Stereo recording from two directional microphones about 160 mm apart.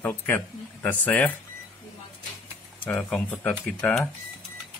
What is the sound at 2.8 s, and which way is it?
Speech, 10° left (ahead or behind).